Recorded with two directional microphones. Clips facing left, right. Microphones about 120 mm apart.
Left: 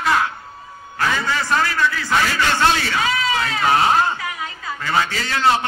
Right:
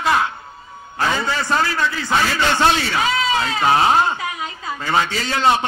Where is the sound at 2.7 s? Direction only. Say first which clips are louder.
Right 1 dB; 20° right (ahead or behind).